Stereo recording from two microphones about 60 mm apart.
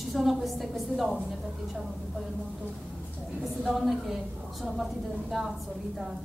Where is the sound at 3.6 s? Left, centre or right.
Centre.